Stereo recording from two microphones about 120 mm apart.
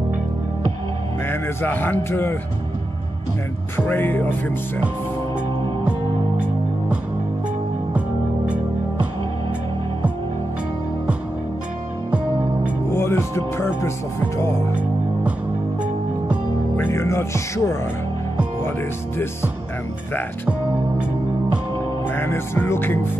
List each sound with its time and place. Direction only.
1.2 s speech: 20° left (ahead or behind)
3.7 s speech: 15° left (ahead or behind)
5.9 s music: 10° right (ahead or behind)
12.9 s music: 20° left (ahead or behind)
16.7 s speech: 20° left (ahead or behind)
22.1 s music: 20° left (ahead or behind)